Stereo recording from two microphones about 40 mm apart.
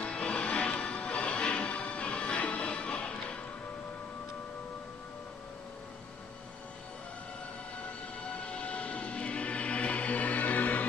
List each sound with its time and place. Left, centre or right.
0.0 s music: left
8.2 s music: left